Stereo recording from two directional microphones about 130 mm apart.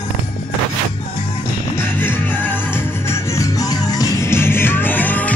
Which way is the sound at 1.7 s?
15° left (ahead or behind).